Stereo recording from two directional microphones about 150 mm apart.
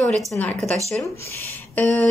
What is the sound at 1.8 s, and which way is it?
Speech, 10° left (ahead or behind).